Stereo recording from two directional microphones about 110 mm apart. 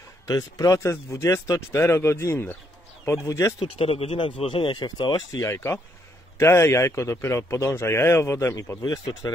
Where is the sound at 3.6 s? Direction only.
60° left (ahead or behind); by 5.4 s 40° left (ahead or behind).